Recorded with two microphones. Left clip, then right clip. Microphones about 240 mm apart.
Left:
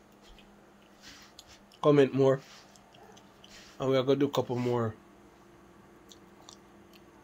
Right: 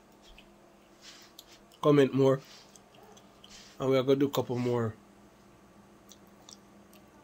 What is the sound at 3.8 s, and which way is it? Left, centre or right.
Speech, right.